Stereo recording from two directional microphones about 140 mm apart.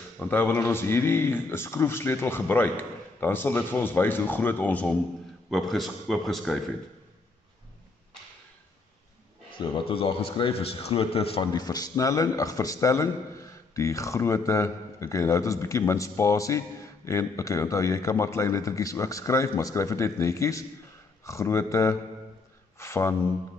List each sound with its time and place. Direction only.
0.2 s speech: 15° left (ahead or behind)
5.5 s a man's voice: centre (ahead or behind)
9.6 s a man's voice: 40° left (ahead or behind)
11.5 s a man's voice: 30° left (ahead or behind)
22.8 s a sound: 20° left (ahead or behind)